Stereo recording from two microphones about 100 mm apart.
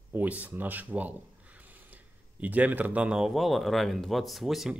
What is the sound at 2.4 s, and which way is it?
Speech, 15° right (ahead or behind).